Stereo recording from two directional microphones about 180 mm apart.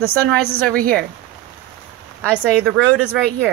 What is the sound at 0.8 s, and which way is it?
Speech, 55° right (ahead or behind).